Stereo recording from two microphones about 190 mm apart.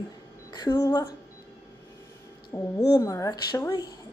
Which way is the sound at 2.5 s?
20° left (ahead or behind).